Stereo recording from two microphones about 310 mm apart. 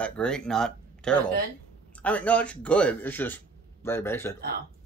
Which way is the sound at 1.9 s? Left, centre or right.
Centre.